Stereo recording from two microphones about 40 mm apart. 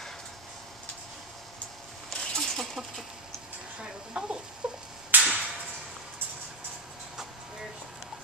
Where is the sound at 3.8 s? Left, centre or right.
Right.